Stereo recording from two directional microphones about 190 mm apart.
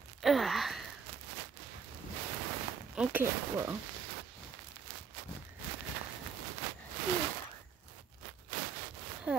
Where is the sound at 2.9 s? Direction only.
10° right (ahead or behind).